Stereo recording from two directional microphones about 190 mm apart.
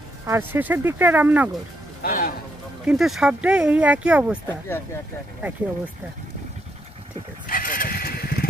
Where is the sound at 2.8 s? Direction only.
Centre (ahead or behind).